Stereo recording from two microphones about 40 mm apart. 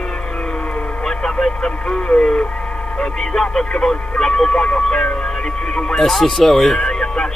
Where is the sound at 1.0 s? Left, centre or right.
Centre.